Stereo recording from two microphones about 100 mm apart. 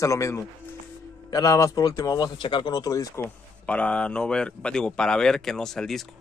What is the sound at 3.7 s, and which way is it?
Speech, 15° left (ahead or behind).